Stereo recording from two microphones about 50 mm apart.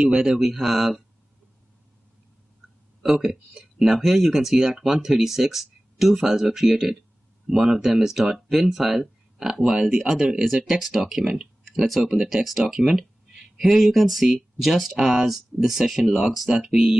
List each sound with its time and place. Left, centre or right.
0.0 s speech: centre
0.4 s speech: centre
3.0 s speech: centre